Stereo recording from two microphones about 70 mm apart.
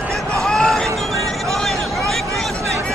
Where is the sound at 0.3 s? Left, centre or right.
Centre.